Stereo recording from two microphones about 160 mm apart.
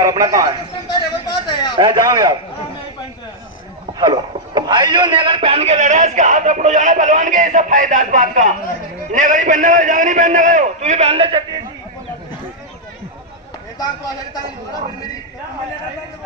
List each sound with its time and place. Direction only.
0.0 s a man's voice: 20° right (ahead or behind)
0.8 s a sound: 25° left (ahead or behind)
1.8 s a man's voice: 25° right (ahead or behind)
4.0 s a man's voice: 25° right (ahead or behind)
13.7 s speech: 25° left (ahead or behind)